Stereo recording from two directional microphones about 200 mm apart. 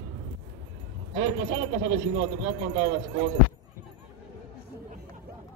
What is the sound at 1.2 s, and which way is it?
Speech, 25° right (ahead or behind).